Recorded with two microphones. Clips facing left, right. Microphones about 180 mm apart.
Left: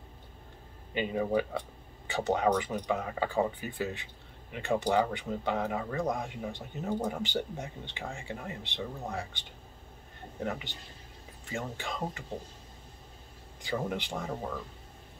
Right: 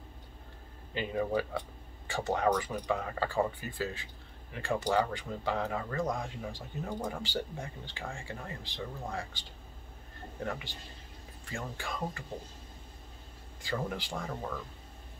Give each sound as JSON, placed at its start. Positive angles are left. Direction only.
{"t": 0.9, "sound": "speech", "side_deg": 15}
{"t": 6.8, "sound": "speech", "side_deg": 10}
{"t": 7.2, "sound": "speech", "side_deg": 20}
{"t": 10.4, "sound": "speech", "side_deg": 15}
{"t": 13.6, "sound": "speech", "side_deg": 15}